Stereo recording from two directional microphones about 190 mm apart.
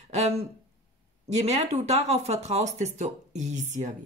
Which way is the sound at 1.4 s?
35° right (ahead or behind).